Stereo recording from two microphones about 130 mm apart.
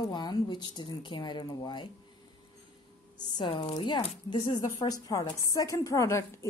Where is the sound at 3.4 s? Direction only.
35° left (ahead or behind).